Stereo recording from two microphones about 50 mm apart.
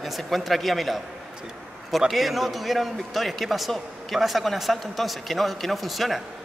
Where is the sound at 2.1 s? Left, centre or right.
Centre.